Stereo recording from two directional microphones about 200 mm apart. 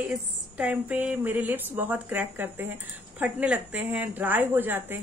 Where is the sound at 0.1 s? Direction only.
5° right (ahead or behind).